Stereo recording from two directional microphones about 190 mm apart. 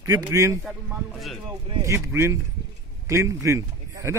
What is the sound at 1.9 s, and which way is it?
A man's voice, 15° right (ahead or behind).